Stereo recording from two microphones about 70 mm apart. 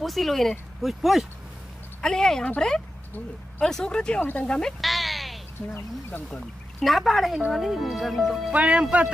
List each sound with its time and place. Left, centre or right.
0.0 s speech: centre
2.0 s speech: centre
4.5 s sheep: centre
5.8 s speech: left
6.8 s speech: centre
8.5 s speech: centre